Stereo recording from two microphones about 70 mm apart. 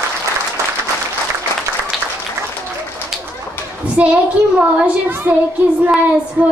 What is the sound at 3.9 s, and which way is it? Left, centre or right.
Child singing, centre.